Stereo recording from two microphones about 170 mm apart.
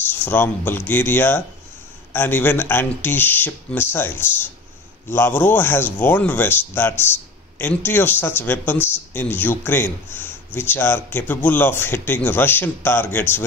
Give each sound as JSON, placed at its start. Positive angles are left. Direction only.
{"t": 0.0, "sound": "a man's voice", "side_deg": 10}